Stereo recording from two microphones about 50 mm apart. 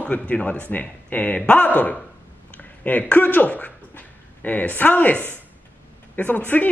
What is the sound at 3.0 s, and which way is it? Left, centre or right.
A man's voice, left.